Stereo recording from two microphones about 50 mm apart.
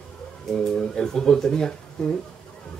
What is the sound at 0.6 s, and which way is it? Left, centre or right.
Speech, centre.